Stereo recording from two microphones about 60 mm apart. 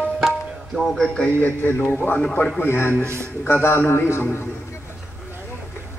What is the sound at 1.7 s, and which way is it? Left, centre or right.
A man's voice, left.